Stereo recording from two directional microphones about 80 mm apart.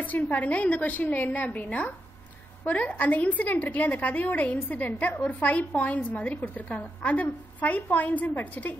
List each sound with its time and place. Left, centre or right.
0.0 s a woman's voice: left